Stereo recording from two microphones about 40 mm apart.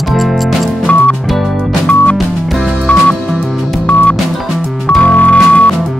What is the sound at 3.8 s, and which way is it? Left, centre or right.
Music, left.